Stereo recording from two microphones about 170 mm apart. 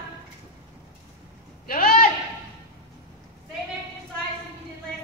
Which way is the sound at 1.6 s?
60° left (ahead or behind).